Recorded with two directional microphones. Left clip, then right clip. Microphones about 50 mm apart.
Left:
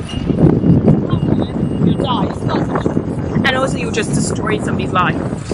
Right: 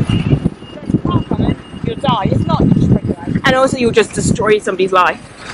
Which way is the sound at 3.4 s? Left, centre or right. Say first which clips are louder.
Right 5 dB; right.